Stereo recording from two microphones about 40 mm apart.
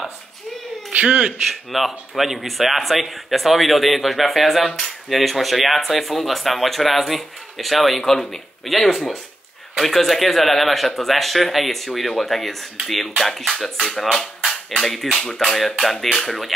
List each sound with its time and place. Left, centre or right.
0.9 s speech: right
1.5 s a man's voice: centre